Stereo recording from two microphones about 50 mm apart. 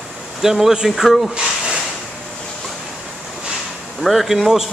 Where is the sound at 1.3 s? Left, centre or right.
Centre.